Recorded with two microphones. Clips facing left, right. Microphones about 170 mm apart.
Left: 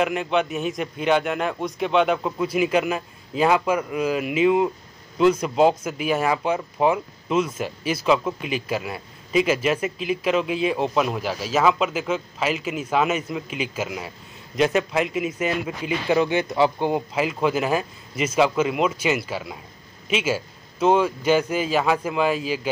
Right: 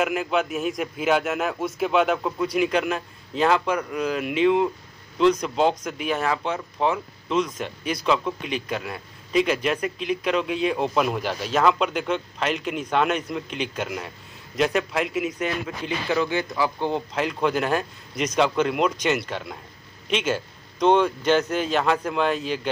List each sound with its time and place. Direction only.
0.0 s speech: centre (ahead or behind)
16.1 s speech: 20° left (ahead or behind)
16.9 s a man's voice: 5° left (ahead or behind)